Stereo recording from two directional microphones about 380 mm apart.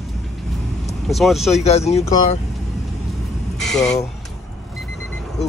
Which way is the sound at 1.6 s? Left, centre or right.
Centre.